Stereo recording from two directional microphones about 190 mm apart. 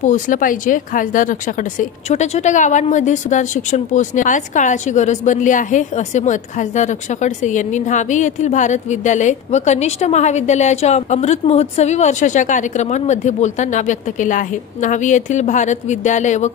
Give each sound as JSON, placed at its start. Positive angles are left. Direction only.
{"t": 0.0, "sound": "speech", "side_deg": 40}